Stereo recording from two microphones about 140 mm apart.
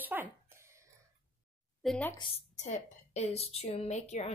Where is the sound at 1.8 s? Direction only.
Centre (ahead or behind).